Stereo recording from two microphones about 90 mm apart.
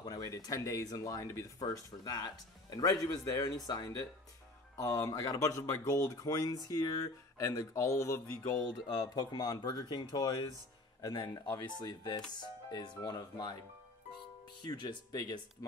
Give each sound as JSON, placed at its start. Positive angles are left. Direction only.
{"t": 0.0, "sound": "speech", "side_deg": 40}
{"t": 4.7, "sound": "speech", "side_deg": 35}
{"t": 8.7, "sound": "speech", "side_deg": 50}
{"t": 11.1, "sound": "speech", "side_deg": 65}
{"t": 11.8, "sound": "speech", "side_deg": 50}
{"t": 14.6, "sound": "speech", "side_deg": 50}